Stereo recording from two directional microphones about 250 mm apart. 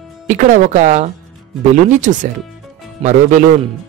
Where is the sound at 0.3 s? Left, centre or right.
Right.